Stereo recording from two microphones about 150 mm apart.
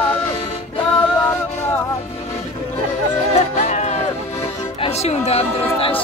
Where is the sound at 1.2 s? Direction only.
15° left (ahead or behind).